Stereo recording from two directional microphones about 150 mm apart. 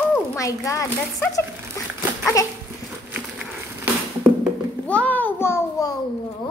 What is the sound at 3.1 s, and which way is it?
Crushing, 10° right (ahead or behind).